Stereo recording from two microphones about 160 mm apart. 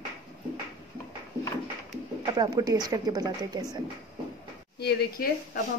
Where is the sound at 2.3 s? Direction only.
25° right (ahead or behind).